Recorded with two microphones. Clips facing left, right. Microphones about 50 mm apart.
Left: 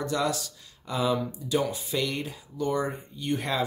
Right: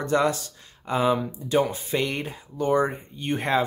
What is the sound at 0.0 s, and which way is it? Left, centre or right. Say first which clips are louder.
Speech: right 5 dB; right.